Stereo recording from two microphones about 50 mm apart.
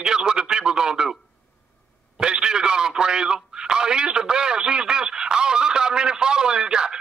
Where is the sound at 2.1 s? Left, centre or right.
Centre.